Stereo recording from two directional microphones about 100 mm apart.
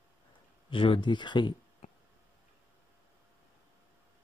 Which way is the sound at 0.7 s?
55° left (ahead or behind).